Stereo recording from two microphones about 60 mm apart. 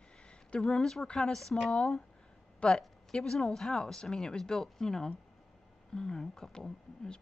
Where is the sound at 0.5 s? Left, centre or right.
Centre.